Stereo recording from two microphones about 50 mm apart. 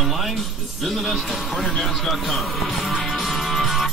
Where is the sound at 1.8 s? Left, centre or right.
Centre.